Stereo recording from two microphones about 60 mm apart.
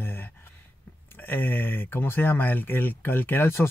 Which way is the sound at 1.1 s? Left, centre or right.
Left.